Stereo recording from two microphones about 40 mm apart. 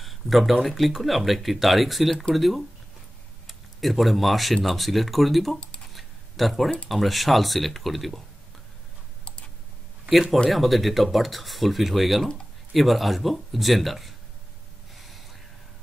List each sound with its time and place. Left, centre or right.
0.0 s speech: centre
3.8 s speech: centre
5.6 s computer keyboard: left
5.9 s a sound: centre
6.9 s speech: centre
10.5 s speech: centre
15.0 s gasp: centre